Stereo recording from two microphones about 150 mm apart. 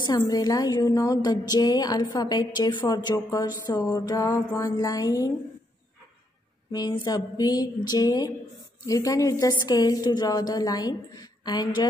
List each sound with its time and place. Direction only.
0.3 s a woman's voice: 25° left (ahead or behind)
6.7 s a woman's voice: 25° left (ahead or behind)